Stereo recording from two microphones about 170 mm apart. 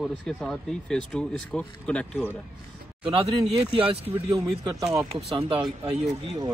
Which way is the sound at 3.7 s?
35° right (ahead or behind).